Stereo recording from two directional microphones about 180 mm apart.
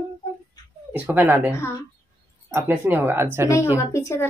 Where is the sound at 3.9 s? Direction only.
15° left (ahead or behind).